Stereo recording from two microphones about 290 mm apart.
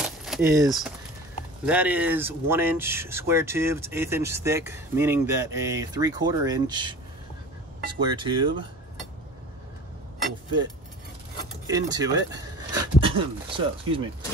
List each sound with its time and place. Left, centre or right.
0.0 s a sound: centre
1.7 s speech: centre
8.0 s speech: centre
11.6 s speech: centre